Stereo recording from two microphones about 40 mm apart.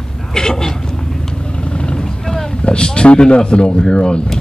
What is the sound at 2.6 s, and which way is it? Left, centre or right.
Speech, left.